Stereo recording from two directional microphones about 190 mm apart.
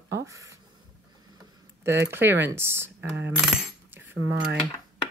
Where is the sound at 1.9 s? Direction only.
15° right (ahead or behind).